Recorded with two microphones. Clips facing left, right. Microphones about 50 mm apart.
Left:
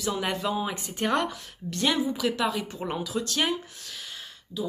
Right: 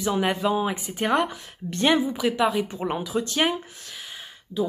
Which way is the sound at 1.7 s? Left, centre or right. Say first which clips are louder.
Right 4 dB; right.